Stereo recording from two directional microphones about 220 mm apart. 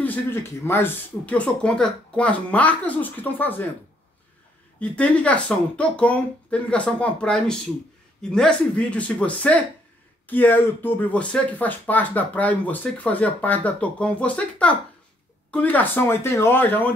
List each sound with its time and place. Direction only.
0.0 s speech: 10° left (ahead or behind)
4.7 s speech: 5° left (ahead or behind)